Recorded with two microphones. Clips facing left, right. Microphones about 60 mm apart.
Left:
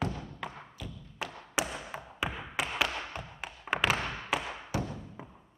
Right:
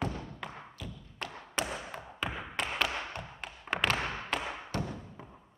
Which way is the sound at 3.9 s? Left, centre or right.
Centre.